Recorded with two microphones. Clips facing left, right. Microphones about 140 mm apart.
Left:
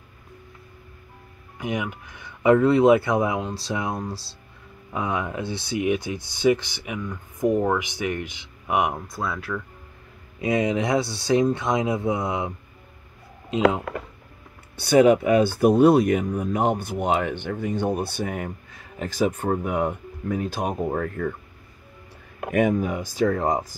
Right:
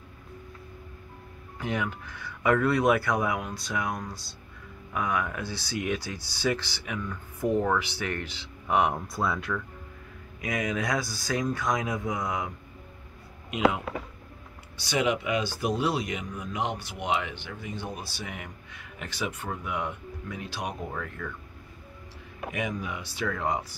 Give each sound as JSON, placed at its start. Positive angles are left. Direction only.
{"t": 1.6, "sound": "speech", "side_deg": 15}
{"t": 9.1, "sound": "speech", "side_deg": 0}
{"t": 10.4, "sound": "speech", "side_deg": 25}
{"t": 14.8, "sound": "speech", "side_deg": 50}
{"t": 22.4, "sound": "speech", "side_deg": 55}